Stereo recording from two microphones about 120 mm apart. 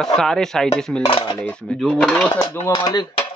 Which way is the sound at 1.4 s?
10° left (ahead or behind).